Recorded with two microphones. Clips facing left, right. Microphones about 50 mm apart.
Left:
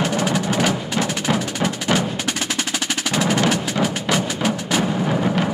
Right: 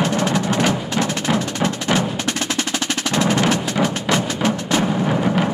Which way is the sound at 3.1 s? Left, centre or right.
Centre.